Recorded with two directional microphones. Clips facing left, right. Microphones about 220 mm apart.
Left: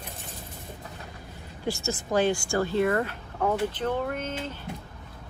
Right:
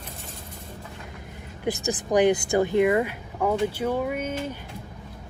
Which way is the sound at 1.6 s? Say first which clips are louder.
Right 3 dB; 15° right (ahead or behind).